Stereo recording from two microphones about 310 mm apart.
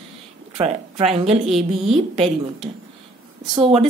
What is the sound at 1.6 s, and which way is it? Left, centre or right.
Speech, centre.